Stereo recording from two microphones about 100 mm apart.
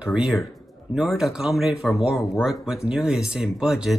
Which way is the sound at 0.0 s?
10° right (ahead or behind).